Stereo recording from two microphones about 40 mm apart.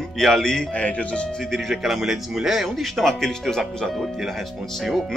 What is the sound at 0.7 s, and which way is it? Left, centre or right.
Speech, left.